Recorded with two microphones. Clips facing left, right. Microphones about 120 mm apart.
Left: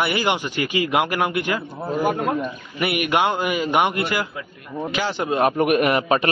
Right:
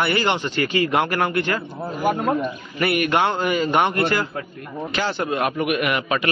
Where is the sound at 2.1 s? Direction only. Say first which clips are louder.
Right 1 dB; centre (ahead or behind).